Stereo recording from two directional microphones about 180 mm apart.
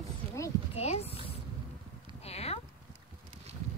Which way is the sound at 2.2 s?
35° left (ahead or behind).